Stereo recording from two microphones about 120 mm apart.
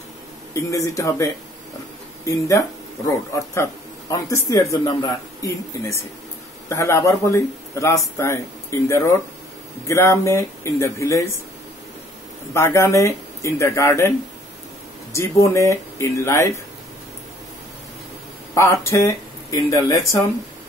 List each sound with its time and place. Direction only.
0.6 s speech: 25° left (ahead or behind)
4.1 s speech: 25° left (ahead or behind)
12.5 s speech: 25° left (ahead or behind)
15.1 s speech: 25° left (ahead or behind)
18.5 s speech: 25° left (ahead or behind)